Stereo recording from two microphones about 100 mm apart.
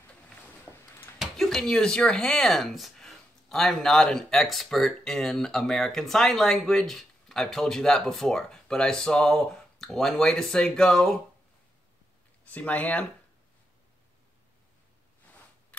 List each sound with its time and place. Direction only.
0.7 s a sound: 25° left (ahead or behind)
1.2 s speech: 5° left (ahead or behind)
12.4 s speech: 15° left (ahead or behind)
15.7 s scissors: 15° left (ahead or behind)